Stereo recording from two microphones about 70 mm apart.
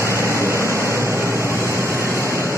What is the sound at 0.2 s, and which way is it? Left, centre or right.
Vehicle, left.